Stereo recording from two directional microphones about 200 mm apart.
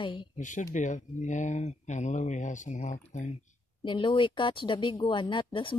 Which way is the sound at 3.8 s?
25° left (ahead or behind).